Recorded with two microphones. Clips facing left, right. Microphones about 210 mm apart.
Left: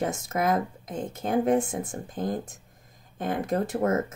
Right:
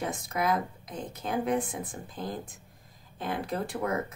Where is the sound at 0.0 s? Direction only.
45° left (ahead or behind).